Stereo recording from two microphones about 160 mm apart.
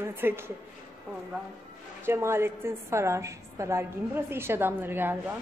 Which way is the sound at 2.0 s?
15° right (ahead or behind).